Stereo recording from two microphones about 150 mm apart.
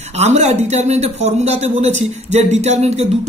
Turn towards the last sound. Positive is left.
turn(degrees=-45)  # may be behind; listen again after turning